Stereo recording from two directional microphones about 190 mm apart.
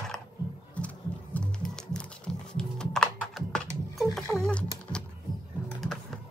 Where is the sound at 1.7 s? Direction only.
5° left (ahead or behind).